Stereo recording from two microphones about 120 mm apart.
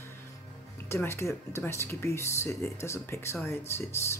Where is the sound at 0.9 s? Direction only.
20° left (ahead or behind).